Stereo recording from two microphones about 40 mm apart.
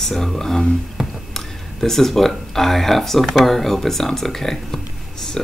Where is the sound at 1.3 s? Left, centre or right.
Centre.